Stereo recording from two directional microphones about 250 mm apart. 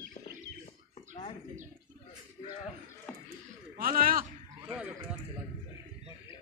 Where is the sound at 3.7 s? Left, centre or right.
Right.